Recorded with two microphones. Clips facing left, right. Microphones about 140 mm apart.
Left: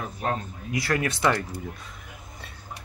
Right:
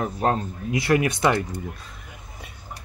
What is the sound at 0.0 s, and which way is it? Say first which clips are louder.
Speech: right 6 dB; 40° right (ahead or behind).